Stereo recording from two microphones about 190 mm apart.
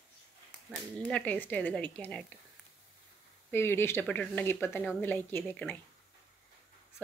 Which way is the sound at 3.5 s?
10° left (ahead or behind).